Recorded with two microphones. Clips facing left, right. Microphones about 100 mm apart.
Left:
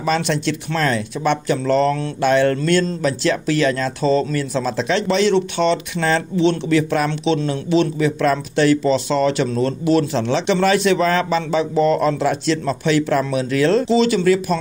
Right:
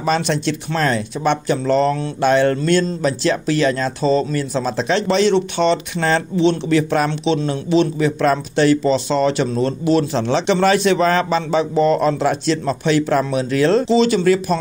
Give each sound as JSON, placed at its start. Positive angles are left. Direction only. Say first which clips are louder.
{"t": 0.0, "sound": "a man's voice", "louder": "right 1 dB", "side_deg": -30}
{"t": 7.1, "sound": "a man's voice", "louder": "even", "side_deg": -25}
{"t": 14.2, "sound": "speech", "louder": "right 1 dB", "side_deg": -40}